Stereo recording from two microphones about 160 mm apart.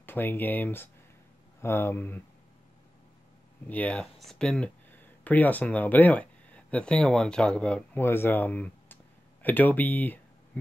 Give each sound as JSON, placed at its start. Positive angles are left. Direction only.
{"t": 0.0, "sound": "speech", "side_deg": 15}
{"t": 3.6, "sound": "speech", "side_deg": 10}